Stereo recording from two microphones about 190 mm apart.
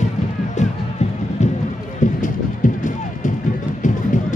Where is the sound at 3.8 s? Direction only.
40° left (ahead or behind).